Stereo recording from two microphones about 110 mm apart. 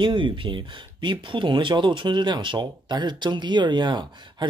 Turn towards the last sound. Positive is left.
turn(degrees=-40)  # may be behind; listen again after turning